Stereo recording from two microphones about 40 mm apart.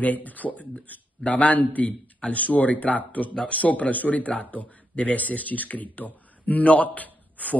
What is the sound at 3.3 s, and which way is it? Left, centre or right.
Speech, left.